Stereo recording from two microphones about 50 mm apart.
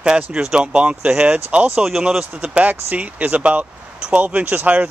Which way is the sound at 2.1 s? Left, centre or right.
Right.